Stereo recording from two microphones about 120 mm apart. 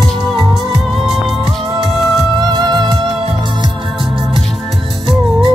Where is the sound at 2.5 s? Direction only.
40° right (ahead or behind).